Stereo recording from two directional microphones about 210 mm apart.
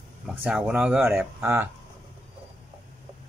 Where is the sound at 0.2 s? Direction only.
5° right (ahead or behind).